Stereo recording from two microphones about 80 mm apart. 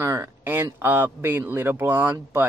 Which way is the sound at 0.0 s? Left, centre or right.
Right.